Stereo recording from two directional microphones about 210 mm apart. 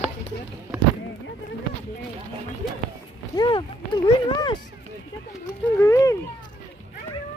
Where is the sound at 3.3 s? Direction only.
20° left (ahead or behind).